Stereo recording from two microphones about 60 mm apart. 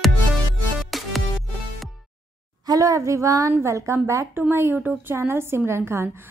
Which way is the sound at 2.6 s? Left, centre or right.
Right.